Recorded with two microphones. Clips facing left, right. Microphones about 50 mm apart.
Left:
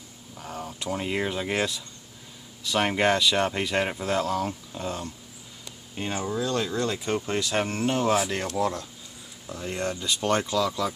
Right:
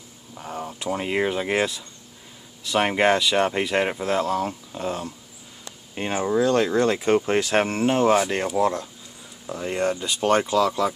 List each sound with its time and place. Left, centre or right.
0.3 s speech: centre
5.9 s speech: right
7.6 s speech: right